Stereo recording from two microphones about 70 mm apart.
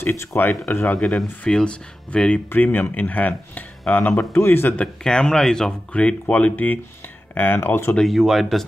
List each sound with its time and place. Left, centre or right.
0.0 s speech: left
0.9 s speech: centre
2.5 s speech: left
4.1 s speech: left
4.7 s speech: centre; by 7.9 s left
8.0 s speech: centre